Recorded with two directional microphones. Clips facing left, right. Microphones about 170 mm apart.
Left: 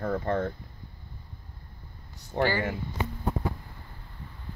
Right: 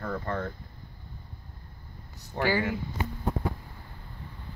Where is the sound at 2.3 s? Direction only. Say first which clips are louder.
Left 2 dB; 20° left (ahead or behind).